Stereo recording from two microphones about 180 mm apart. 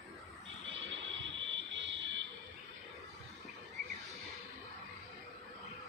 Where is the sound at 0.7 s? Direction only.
90° right.